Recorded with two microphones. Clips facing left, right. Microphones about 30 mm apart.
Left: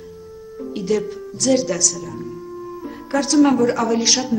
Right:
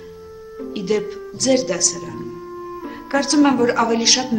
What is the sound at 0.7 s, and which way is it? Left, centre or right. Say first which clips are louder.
A woman's voice: even; right.